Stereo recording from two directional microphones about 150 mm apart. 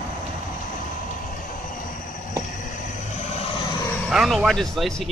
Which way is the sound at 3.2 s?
45° left (ahead or behind).